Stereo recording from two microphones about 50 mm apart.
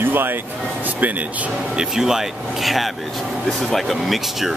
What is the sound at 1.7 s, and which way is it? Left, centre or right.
Speech, centre.